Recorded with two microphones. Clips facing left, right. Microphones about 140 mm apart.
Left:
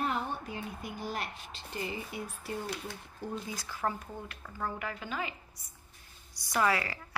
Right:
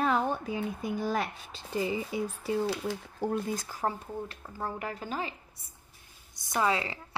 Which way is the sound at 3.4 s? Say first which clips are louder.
Right 5 dB; 50° right (ahead or behind).